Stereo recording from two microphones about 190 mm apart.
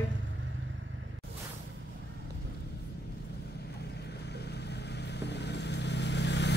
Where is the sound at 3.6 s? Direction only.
60° left (ahead or behind).